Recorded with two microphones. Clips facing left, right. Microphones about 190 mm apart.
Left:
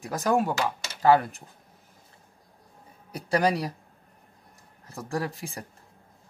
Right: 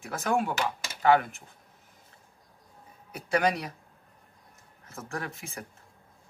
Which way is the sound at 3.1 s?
35° left (ahead or behind).